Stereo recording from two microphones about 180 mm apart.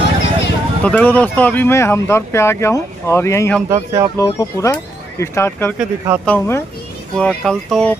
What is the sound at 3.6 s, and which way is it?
Speech, 20° right (ahead or behind).